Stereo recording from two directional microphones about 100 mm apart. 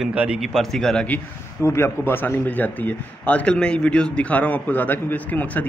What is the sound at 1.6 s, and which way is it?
A man's voice, 25° left (ahead or behind).